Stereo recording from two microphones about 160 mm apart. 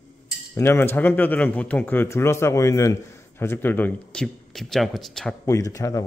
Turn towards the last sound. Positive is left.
turn(degrees=20)  # may be behind; listen again after turning